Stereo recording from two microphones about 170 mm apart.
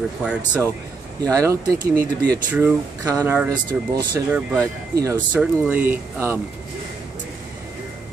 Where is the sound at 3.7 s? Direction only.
5° right (ahead or behind).